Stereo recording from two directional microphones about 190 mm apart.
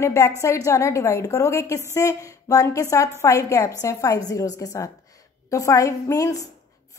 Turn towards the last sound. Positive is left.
turn(degrees=15)  # may be behind; listen again after turning